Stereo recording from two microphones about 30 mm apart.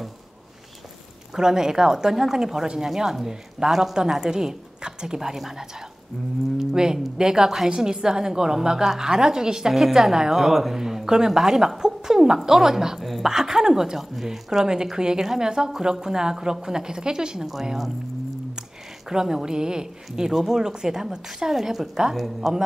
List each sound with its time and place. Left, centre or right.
1.3 s a woman's voice: centre
6.7 s a woman's voice: right
10.3 s speech: centre
11.4 s a sound: centre
12.4 s speech: centre
13.0 s speech: centre
13.3 s speech: centre
13.9 s speech: centre
14.6 s a woman's voice: right
19.0 s a woman's voice: centre
21.5 s speech: centre